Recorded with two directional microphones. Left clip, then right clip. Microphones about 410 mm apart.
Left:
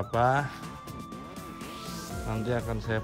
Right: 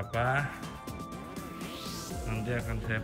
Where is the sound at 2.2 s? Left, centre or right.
Centre.